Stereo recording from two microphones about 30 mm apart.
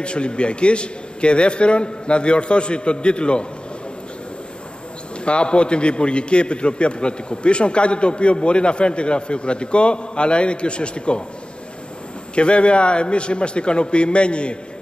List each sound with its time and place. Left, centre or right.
0.0 s a man's voice: left
5.2 s a man's voice: left
12.4 s a man's voice: left